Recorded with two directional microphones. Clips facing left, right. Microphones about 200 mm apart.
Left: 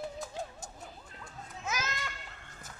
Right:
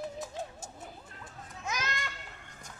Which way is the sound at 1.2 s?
5° left (ahead or behind).